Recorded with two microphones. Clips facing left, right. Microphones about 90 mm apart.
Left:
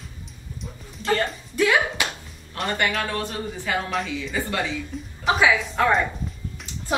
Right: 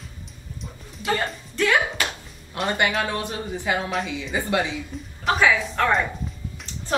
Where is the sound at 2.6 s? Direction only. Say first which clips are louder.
Right 2 dB; 15° right (ahead or behind).